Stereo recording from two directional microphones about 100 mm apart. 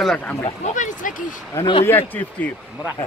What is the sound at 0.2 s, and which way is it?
Speech, 15° left (ahead or behind).